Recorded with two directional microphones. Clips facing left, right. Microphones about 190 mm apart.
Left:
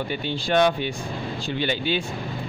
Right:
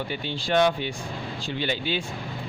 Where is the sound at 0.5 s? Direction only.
55° left (ahead or behind).